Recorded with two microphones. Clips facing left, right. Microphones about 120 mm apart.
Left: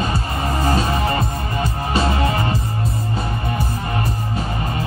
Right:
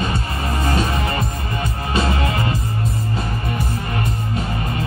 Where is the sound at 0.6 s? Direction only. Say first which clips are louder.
Left 2 dB; 30° left (ahead or behind).